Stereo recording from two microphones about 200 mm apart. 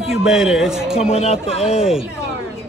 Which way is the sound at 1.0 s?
30° left (ahead or behind).